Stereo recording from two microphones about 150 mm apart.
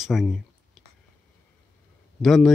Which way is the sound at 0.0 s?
Centre (ahead or behind).